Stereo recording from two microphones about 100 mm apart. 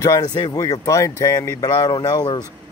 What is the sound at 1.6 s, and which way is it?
Speech, 45° left (ahead or behind).